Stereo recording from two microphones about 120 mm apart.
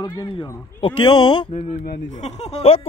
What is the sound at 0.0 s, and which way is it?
Speech, 30° left (ahead or behind).